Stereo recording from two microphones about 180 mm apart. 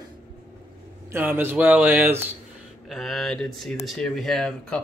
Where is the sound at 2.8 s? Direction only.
Centre (ahead or behind).